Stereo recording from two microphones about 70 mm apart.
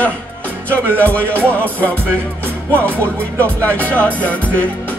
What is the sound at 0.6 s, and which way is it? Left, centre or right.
Speech, left.